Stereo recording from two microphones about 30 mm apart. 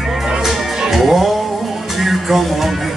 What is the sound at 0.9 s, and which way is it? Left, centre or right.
Music, centre.